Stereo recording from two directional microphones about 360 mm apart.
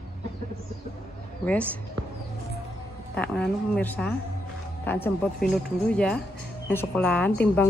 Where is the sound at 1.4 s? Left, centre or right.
Centre.